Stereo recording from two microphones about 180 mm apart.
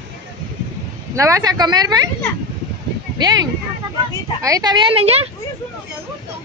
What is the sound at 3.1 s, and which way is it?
Speech, 25° right (ahead or behind).